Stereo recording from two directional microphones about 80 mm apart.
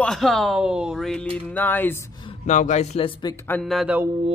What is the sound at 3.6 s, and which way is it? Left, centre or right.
Speech, centre.